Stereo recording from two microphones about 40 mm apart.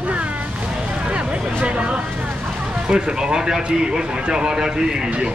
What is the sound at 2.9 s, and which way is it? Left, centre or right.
Speech, centre.